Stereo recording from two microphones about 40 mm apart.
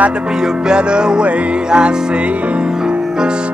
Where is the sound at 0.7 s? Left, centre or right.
Right.